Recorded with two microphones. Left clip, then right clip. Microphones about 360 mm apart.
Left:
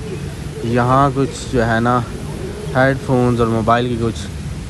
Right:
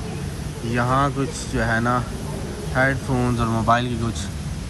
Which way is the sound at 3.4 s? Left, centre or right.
Centre.